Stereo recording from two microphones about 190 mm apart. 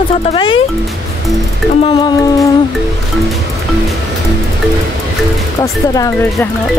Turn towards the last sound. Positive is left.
turn(degrees=15)  # may be behind; listen again after turning